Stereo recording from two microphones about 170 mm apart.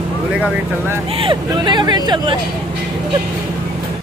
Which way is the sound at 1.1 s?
30° right (ahead or behind).